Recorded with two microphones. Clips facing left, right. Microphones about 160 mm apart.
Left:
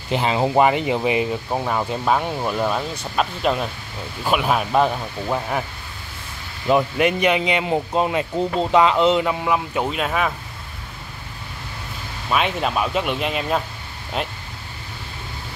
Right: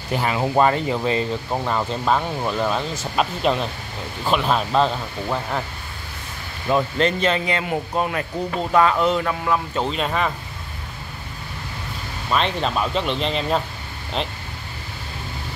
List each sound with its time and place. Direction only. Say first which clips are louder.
0.1 s speech: left 2 dB; 20° left (ahead or behind)
6.7 s speech: left 2 dB; 15° left (ahead or behind)
12.3 s speech: left 1 dB; 10° left (ahead or behind)